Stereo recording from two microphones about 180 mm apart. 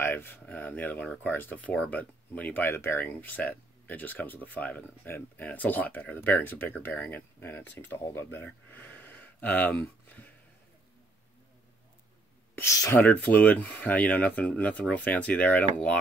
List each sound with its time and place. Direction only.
0.0 s speech: 10° left (ahead or behind)
12.5 s speech: 15° left (ahead or behind)